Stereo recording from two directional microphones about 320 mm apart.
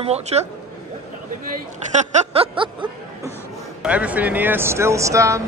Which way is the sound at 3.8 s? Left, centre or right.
Centre.